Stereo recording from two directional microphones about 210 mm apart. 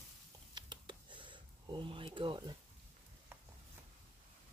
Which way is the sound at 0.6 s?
20° right (ahead or behind).